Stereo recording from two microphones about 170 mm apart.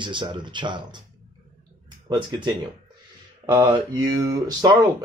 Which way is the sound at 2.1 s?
25° right (ahead or behind).